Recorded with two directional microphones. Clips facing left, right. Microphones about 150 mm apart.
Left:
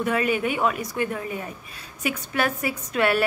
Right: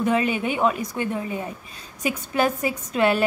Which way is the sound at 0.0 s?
25° right (ahead or behind).